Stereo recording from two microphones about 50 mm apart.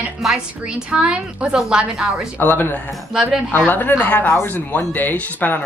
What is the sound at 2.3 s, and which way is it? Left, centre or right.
Speech, left.